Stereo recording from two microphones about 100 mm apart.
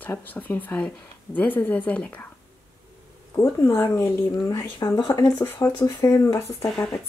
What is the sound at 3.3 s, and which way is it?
Speech, 25° left (ahead or behind).